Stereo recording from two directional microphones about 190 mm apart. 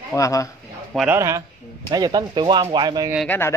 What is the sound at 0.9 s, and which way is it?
Speech, 10° right (ahead or behind).